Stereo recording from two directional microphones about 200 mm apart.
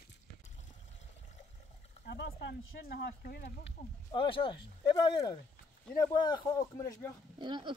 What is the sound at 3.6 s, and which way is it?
Speech, 25° left (ahead or behind).